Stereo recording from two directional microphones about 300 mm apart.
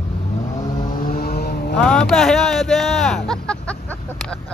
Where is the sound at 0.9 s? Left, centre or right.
Left.